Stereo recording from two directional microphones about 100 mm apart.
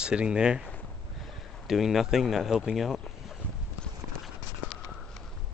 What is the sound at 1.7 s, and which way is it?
Speech, centre (ahead or behind).